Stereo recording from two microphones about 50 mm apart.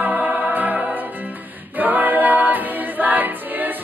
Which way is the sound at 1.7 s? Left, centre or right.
Right.